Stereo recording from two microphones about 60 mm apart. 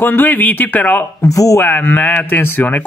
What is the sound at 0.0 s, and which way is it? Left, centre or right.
Speech, left.